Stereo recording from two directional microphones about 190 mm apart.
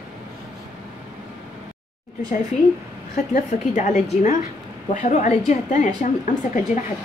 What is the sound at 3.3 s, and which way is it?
A woman's voice, 40° left (ahead or behind).